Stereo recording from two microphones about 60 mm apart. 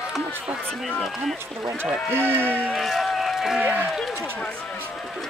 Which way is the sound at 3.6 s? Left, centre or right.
Right.